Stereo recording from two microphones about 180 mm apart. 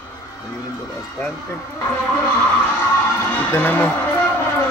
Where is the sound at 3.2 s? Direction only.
10° left (ahead or behind).